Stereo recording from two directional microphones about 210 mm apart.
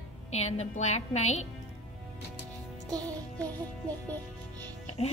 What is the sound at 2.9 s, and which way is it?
Music, 20° right (ahead or behind).